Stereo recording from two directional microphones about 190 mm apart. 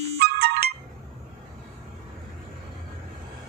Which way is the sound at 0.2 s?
55° right (ahead or behind).